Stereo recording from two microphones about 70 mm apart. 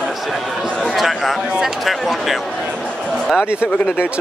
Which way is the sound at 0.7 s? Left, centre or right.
Centre.